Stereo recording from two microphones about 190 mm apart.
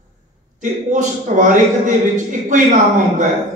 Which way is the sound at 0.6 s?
40° right (ahead or behind).